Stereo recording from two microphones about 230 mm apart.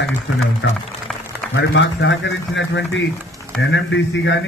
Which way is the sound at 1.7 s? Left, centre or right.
Left.